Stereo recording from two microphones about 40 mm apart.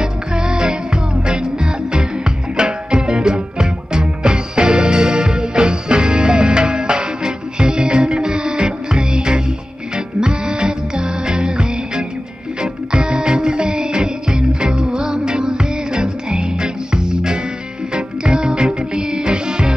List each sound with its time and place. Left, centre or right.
0.0 s music: centre